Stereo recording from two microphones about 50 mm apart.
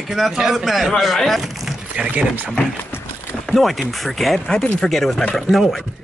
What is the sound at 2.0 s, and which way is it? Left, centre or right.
Speech, right.